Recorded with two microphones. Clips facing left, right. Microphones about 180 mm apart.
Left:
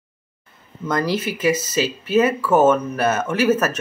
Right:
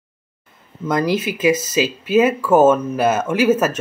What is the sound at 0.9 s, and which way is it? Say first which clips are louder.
Speech: right 3 dB; 20° right (ahead or behind).